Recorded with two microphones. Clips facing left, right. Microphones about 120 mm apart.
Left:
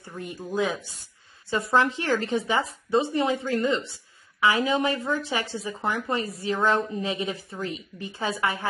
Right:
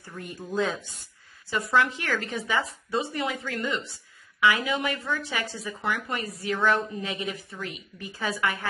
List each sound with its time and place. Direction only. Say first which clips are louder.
0.1 s speech: left 3 dB; 15° left (ahead or behind)
1.5 s a woman's voice: left 2 dB; 30° left (ahead or behind)